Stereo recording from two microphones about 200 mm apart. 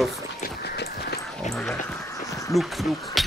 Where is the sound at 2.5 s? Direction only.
Centre (ahead or behind).